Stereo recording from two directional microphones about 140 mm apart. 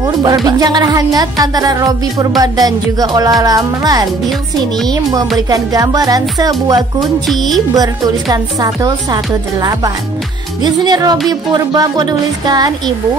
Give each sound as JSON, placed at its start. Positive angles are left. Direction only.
{"t": 0.0, "sound": "speech", "side_deg": -25}
{"t": 5.5, "sound": "speech", "side_deg": -25}
{"t": 7.0, "sound": "speech", "side_deg": 0}
{"t": 7.7, "sound": "speech", "side_deg": -25}